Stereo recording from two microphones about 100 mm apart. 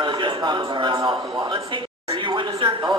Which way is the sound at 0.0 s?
50° right (ahead or behind).